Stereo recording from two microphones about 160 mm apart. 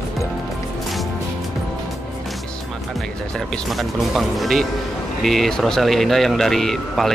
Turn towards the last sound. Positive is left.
turn(degrees=0)  # may be behind; listen again after turning